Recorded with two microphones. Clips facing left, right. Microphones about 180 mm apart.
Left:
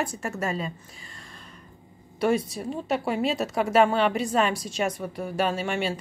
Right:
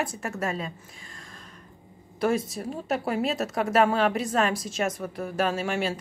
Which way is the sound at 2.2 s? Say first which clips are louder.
Left 1 dB; centre (ahead or behind).